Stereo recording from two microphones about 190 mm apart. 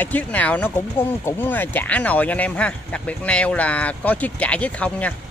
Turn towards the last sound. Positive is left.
turn(degrees=5)  # may be behind; listen again after turning